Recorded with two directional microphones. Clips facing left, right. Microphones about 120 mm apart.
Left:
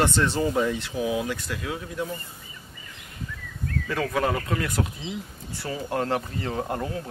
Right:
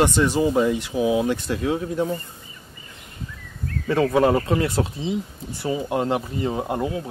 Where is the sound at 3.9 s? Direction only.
25° right (ahead or behind).